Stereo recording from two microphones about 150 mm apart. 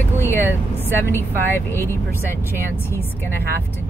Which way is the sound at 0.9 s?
15° left (ahead or behind).